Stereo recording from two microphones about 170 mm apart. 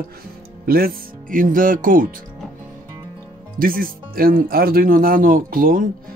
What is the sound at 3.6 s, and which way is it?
Speech, 60° right (ahead or behind).